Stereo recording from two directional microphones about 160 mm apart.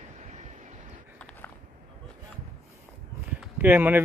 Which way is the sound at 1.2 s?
10° left (ahead or behind).